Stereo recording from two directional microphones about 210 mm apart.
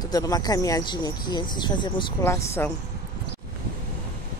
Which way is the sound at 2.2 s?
10° left (ahead or behind).